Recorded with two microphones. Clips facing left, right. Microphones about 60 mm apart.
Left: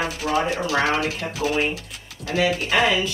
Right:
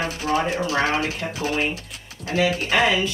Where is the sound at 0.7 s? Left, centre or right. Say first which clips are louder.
Left 1 dB; right.